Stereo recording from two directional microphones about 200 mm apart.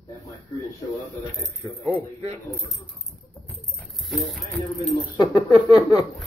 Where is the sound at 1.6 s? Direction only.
10° left (ahead or behind).